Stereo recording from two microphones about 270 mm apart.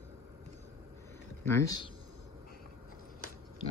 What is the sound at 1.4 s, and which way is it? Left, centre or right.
Speech, centre.